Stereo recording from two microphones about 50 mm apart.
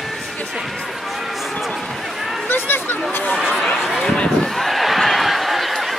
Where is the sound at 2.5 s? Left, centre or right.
Left.